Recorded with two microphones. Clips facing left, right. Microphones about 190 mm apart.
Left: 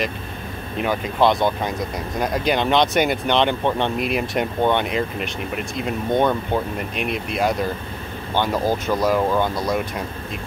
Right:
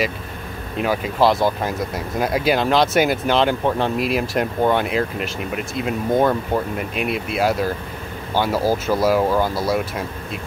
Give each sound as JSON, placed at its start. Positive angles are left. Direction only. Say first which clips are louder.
{"t": 0.7, "sound": "speech", "louder": "right 1 dB", "side_deg": -5}